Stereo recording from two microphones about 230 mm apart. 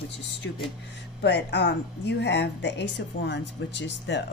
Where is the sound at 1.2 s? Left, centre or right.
Left.